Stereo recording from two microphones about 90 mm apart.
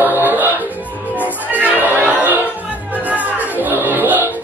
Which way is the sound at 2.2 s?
20° right (ahead or behind).